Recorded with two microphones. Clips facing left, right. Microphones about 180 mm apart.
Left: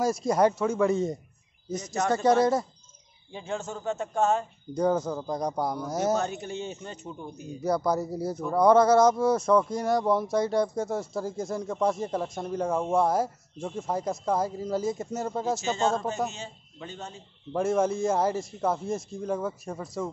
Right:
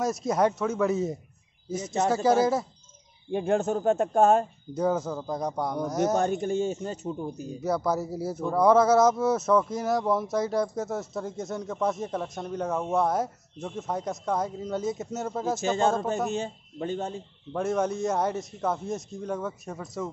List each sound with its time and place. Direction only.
0.0 s speech: centre (ahead or behind)
1.8 s speech: 25° right (ahead or behind)
2.0 s speech: 5° right (ahead or behind)
3.3 s speech: 55° right (ahead or behind)
4.7 s speech: 5° right (ahead or behind)
6.1 s speech: 50° right (ahead or behind)
7.6 s speech: 5° right (ahead or behind)
15.6 s speech: 55° right (ahead or behind)
17.5 s speech: centre (ahead or behind)